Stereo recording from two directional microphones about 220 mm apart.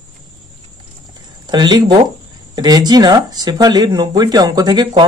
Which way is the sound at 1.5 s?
20° right (ahead or behind).